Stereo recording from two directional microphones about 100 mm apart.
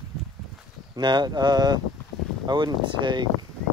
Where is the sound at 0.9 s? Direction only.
50° right (ahead or behind).